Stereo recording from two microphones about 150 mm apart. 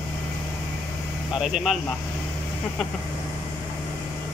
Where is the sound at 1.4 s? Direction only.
5° right (ahead or behind).